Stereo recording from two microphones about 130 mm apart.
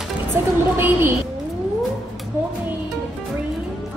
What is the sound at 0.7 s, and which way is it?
Speech, 15° right (ahead or behind).